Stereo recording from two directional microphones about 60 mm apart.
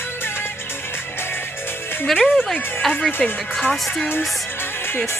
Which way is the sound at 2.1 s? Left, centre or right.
Centre.